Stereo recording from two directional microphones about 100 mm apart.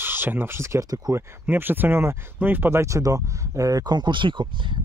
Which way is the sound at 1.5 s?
20° right (ahead or behind).